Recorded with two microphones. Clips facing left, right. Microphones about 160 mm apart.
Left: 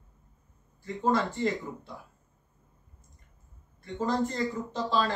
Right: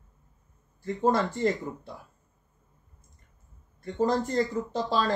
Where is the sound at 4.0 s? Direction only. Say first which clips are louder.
Right 3 dB; 40° right (ahead or behind).